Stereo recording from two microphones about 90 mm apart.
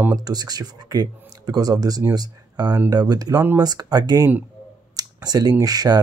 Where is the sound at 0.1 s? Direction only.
45° right (ahead or behind).